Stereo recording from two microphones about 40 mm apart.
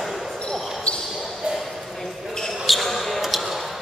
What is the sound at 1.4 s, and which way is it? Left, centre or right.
Ping, right.